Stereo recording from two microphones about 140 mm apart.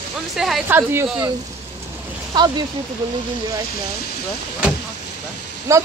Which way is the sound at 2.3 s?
30° right (ahead or behind).